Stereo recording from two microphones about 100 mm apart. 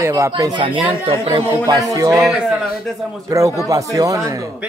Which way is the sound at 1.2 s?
45° right (ahead or behind).